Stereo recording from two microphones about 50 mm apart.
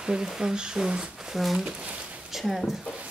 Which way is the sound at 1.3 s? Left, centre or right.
Centre.